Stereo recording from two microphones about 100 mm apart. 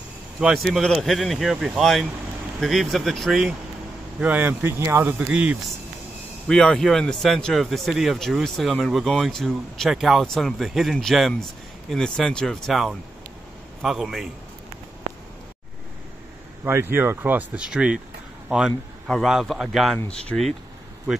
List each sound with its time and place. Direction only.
0.4 s a man's voice: centre (ahead or behind)
4.2 s speech: 15° right (ahead or behind)
5.3 s speech: 10° right (ahead or behind)
6.4 s a man's voice: 10° left (ahead or behind)
16.6 s speech: 25° right (ahead or behind)
19.0 s a man's voice: centre (ahead or behind)